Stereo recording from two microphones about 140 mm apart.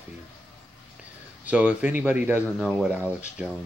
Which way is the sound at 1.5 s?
10° right (ahead or behind).